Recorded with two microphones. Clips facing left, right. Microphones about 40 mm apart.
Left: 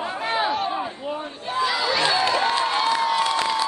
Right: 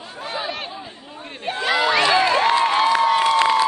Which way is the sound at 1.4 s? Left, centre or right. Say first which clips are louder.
Right 4 dB; right.